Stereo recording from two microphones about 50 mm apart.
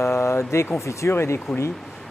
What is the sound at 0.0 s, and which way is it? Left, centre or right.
Speech, left.